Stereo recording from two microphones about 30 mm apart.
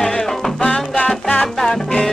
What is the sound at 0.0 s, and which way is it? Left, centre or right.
Music, centre.